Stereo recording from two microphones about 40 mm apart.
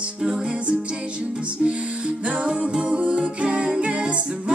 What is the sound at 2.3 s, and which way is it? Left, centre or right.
Music, right.